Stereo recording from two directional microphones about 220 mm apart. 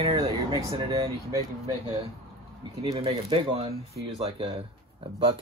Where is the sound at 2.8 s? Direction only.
20° right (ahead or behind).